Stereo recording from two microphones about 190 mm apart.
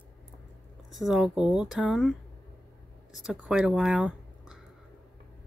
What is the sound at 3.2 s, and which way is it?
Speech, 5° right (ahead or behind).